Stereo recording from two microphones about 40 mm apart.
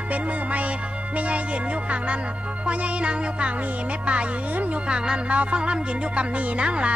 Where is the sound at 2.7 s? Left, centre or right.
Right.